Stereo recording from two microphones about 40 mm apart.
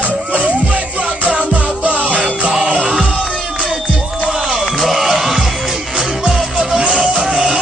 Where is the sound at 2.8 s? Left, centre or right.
Centre.